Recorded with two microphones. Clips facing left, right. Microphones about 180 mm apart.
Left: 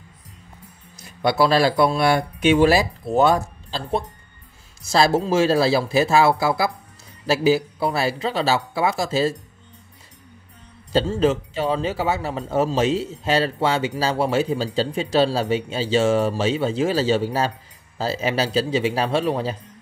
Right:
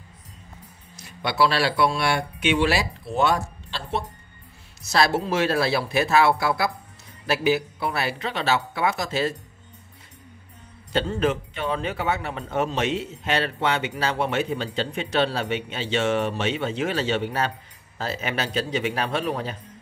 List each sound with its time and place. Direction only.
1.2 s a man's voice: 40° left (ahead or behind)
5.2 s speech: 30° left (ahead or behind)
7.2 s a man's voice: 30° left (ahead or behind)
11.1 s a man's voice: 30° left (ahead or behind)